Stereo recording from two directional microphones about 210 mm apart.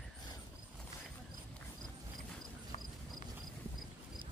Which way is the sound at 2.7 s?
40° left (ahead or behind).